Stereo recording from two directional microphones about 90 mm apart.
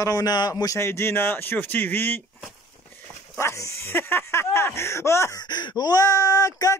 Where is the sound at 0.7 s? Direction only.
30° left (ahead or behind).